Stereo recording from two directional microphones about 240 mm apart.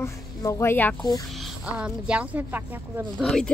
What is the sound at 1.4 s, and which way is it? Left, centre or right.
Speech, centre.